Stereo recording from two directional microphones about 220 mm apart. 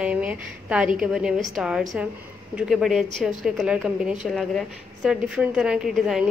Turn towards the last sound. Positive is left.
turn(degrees=0)  # may be behind; listen again after turning